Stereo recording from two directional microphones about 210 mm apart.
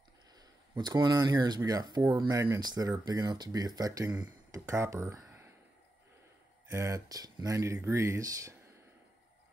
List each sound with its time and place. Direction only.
0.7 s speech: 20° right (ahead or behind)
6.7 s speech: 15° right (ahead or behind)